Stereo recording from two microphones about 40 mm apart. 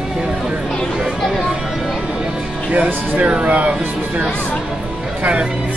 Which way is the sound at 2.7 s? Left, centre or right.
Right.